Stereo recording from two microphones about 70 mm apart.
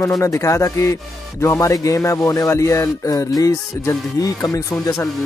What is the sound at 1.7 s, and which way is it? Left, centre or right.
Speech, left.